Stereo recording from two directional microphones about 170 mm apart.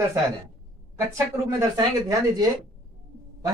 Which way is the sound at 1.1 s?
15° right (ahead or behind).